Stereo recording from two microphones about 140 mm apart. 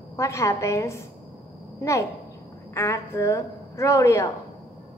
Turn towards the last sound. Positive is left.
turn(degrees=20)  # may be behind; listen again after turning